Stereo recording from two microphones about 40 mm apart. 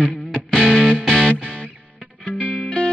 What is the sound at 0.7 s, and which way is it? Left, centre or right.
Music, centre.